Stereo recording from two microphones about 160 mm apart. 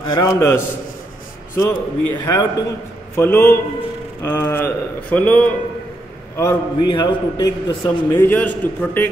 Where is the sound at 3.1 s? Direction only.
15° left (ahead or behind).